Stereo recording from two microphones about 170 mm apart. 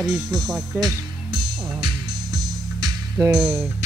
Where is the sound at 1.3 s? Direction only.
30° right (ahead or behind).